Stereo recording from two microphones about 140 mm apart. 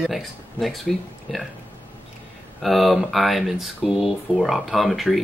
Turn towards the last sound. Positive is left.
turn(degrees=0)  # may be behind; listen again after turning